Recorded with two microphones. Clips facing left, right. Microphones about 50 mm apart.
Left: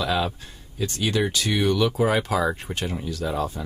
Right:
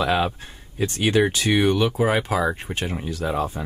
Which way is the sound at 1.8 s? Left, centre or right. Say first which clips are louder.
Right 1 dB; centre.